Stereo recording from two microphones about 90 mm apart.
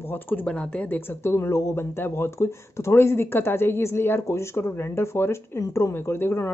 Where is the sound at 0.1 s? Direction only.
20° left (ahead or behind).